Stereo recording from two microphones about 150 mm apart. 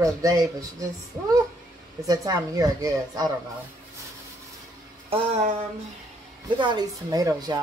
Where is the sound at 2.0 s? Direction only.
25° right (ahead or behind).